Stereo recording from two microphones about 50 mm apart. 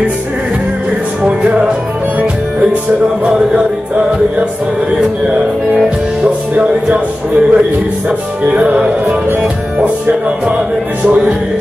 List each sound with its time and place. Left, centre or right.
1.2 s music: right
3.3 s speech: right
5.7 s music: centre
6.5 s speech: right